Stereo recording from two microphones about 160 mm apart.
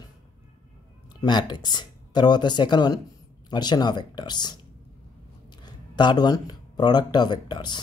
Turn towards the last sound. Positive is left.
turn(degrees=30)  # may be behind; listen again after turning